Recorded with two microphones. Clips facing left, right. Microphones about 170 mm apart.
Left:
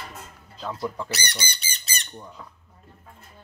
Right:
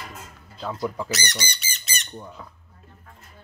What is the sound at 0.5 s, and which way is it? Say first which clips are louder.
Speech: right 2 dB; centre (ahead or behind).